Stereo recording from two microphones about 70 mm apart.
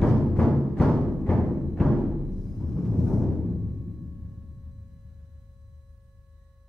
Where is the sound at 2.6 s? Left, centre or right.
Centre.